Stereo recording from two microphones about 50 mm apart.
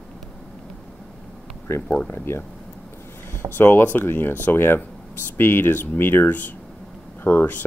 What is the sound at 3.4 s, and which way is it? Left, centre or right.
Speech, left.